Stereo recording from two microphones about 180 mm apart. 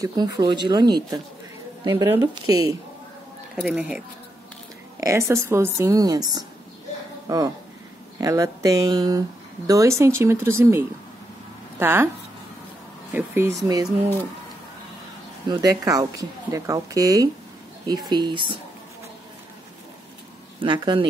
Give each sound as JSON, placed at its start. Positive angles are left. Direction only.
{"t": 0.0, "sound": "speech", "side_deg": -20}
{"t": 3.6, "sound": "a woman's voice", "side_deg": -5}
{"t": 5.0, "sound": "a woman's voice", "side_deg": -15}
{"t": 13.1, "sound": "a woman's voice", "side_deg": -10}
{"t": 15.4, "sound": "speech", "side_deg": -20}
{"t": 20.5, "sound": "speech", "side_deg": -25}